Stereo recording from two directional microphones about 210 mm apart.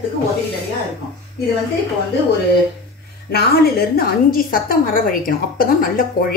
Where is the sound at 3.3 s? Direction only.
50° left (ahead or behind).